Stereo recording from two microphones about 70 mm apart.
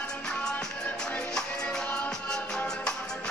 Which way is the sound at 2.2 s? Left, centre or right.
Centre.